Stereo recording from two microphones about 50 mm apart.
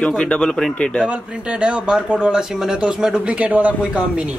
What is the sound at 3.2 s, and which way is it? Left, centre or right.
Speech, right.